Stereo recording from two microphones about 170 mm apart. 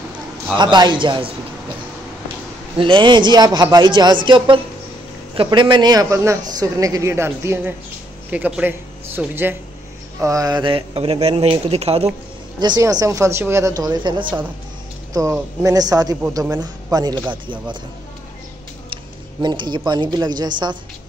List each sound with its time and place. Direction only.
0.6 s a man's voice: 25° right (ahead or behind)
2.8 s a man's voice: 30° right (ahead or behind)
12.5 s a man's voice: 25° right (ahead or behind)
19.4 s a man's voice: 25° right (ahead or behind)